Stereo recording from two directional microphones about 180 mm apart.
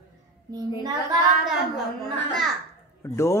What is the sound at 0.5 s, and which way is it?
Speech, 20° right (ahead or behind).